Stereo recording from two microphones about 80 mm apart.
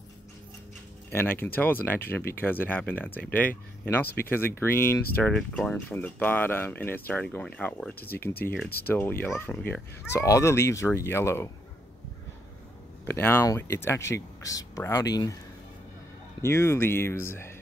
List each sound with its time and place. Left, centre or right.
1.1 s speech: left
5.2 s speech: centre
5.9 s speech: left
8.2 s speech: left
10.1 s speech: left
13.0 s speech: left
16.4 s speech: left